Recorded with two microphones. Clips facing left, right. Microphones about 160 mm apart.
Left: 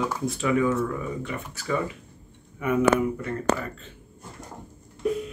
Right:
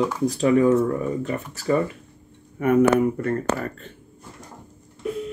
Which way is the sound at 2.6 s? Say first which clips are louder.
Right 4 dB; 55° right (ahead or behind).